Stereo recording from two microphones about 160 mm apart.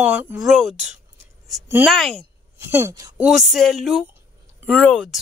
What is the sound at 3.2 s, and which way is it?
A woman's voice, 5° right (ahead or behind).